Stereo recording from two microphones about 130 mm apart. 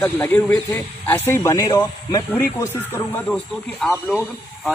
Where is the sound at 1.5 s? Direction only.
30° left (ahead or behind).